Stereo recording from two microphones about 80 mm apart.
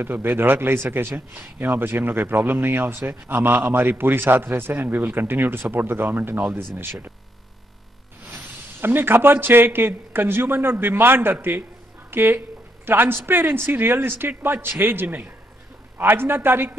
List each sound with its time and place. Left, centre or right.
0.0 s a man's voice: right
8.3 s a man's voice: right